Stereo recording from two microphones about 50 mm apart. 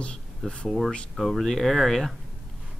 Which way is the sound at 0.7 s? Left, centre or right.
Centre.